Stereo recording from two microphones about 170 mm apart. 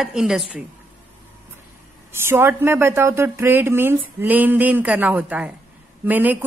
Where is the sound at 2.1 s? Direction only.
15° right (ahead or behind).